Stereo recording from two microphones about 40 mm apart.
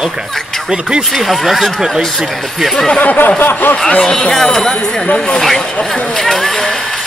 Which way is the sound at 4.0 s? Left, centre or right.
Centre.